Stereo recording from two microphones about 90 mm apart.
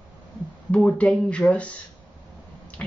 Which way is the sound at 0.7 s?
15° left (ahead or behind).